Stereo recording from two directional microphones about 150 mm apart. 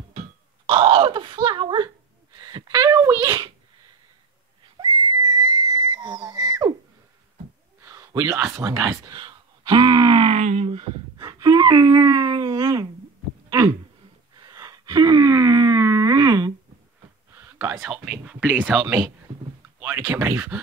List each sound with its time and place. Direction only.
0.7 s speech: 35° right (ahead or behind); by 3.3 s 20° right (ahead or behind)
4.7 s whistle: 30° right (ahead or behind)
7.8 s speech: 20° right (ahead or behind)
10.4 s speech: 45° right (ahead or behind); by 12.8 s 25° right (ahead or behind)
14.3 s wail: 25° right (ahead or behind)
17.3 s a sound: 15° right (ahead or behind)
17.7 s speech: 5° right (ahead or behind)